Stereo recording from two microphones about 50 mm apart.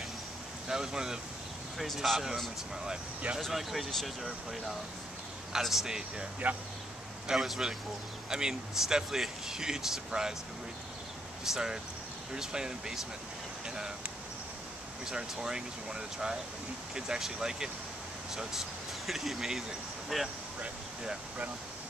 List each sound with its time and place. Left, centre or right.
0.7 s speech: centre
1.8 s speech: centre
6.4 s speech: right
7.2 s speech: centre
11.4 s speech: centre
15.0 s speech: centre